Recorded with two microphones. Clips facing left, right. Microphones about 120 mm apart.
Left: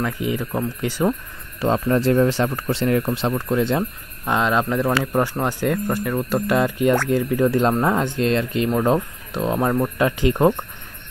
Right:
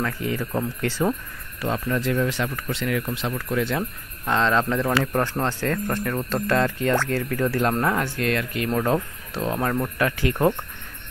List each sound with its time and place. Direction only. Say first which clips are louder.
0.0 s speech: left 3 dB; 15° left (ahead or behind)
1.6 s speech: left 6 dB; 30° left (ahead or behind)
4.3 s speech: left 1 dB; 15° left (ahead or behind)